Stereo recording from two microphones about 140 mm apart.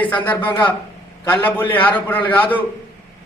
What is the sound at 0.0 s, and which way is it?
A man's voice, 10° left (ahead or behind).